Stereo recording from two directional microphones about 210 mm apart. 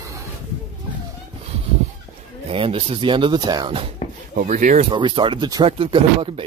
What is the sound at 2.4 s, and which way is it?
Speech, 25° right (ahead or behind).